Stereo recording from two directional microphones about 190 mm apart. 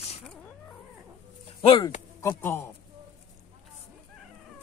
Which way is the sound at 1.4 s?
25° left (ahead or behind).